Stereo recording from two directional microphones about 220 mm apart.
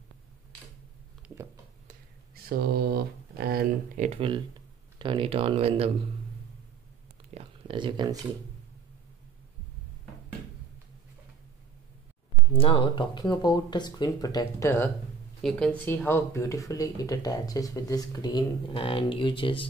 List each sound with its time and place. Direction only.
1.9 s a sound: 45° right (ahead or behind); by 4.4 s 25° right (ahead or behind)
4.9 s speech: 20° right (ahead or behind)
7.3 s speech: 25° right (ahead or behind)
12.5 s speech: 25° left (ahead or behind)